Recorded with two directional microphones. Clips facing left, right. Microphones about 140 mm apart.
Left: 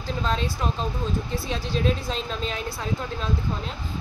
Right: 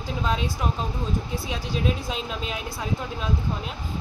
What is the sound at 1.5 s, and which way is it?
Speech, 10° right (ahead or behind).